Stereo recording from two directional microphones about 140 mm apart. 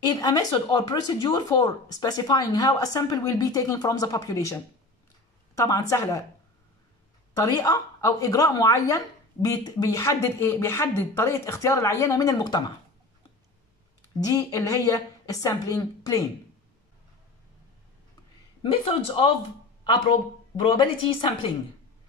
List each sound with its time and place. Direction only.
0.1 s speech: 30° left (ahead or behind)
7.3 s speech: 25° left (ahead or behind)
14.3 s speech: 25° left (ahead or behind)
18.6 s a woman's voice: 40° left (ahead or behind)
20.6 s a woman's voice: 35° left (ahead or behind)